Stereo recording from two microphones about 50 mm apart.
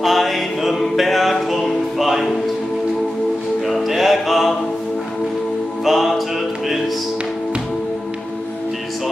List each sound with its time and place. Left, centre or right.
0.0 s music: centre
3.6 s music: centre
5.9 s music: centre